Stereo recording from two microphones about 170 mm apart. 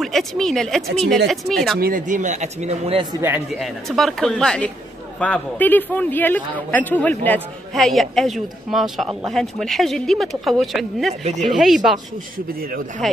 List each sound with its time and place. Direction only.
0.0 s a man's voice: centre (ahead or behind)
1.8 s speech: 55° right (ahead or behind); by 3.1 s 40° right (ahead or behind)
3.2 s speech: 10° right (ahead or behind)
3.5 s a man's voice: centre (ahead or behind)
11.2 s speech: 40° right (ahead or behind)
11.5 s a man's voice: centre (ahead or behind)
13.0 s a man's voice: centre (ahead or behind)